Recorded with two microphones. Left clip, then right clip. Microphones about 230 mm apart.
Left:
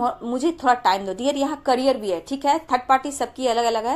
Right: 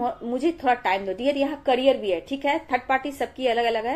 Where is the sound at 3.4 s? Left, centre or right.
Left.